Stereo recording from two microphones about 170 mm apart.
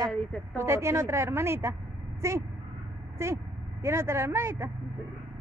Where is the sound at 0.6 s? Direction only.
15° right (ahead or behind).